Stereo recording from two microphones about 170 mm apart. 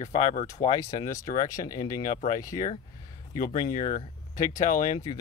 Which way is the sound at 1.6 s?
50° left (ahead or behind).